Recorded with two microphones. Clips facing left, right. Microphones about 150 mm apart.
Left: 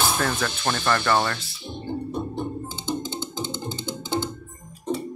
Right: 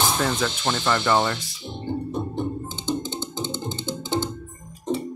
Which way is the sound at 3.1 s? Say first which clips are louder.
Right 1 dB; 15° right (ahead or behind).